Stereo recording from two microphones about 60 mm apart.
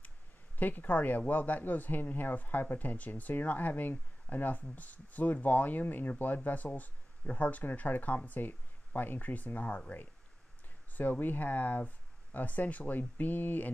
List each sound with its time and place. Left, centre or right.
0.6 s speech: left